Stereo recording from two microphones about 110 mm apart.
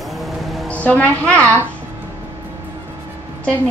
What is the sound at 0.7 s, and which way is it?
Speech, 10° left (ahead or behind).